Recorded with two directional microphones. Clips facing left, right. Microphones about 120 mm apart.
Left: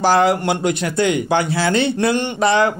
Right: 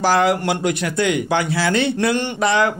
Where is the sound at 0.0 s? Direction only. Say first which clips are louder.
Left 2 dB; 30° left (ahead or behind).